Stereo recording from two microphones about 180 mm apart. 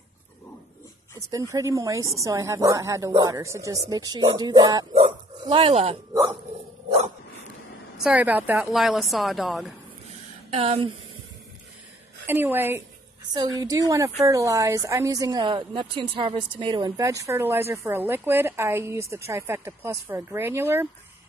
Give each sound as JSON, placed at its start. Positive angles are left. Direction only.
{"t": 1.5, "sound": "a woman's voice", "side_deg": -15}
{"t": 8.0, "sound": "a woman's voice", "side_deg": -10}
{"t": 10.5, "sound": "speech", "side_deg": -35}
{"t": 12.3, "sound": "a woman's voice", "side_deg": -10}